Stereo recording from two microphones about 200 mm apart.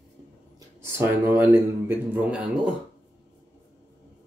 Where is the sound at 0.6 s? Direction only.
10° right (ahead or behind).